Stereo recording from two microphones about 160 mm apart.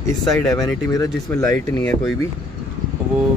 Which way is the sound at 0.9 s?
20° left (ahead or behind).